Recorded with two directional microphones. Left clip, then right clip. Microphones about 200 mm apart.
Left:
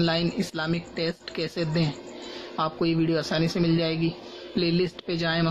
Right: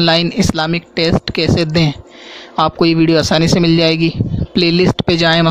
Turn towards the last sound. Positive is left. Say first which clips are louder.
# right 15 dB
turn(degrees=-55)  # may be behind; listen again after turning